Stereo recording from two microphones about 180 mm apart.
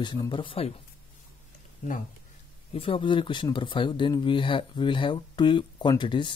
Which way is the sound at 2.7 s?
30° left (ahead or behind).